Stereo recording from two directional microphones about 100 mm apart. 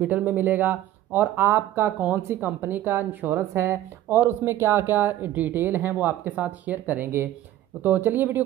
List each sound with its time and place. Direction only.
0.0 s speech: 15° right (ahead or behind)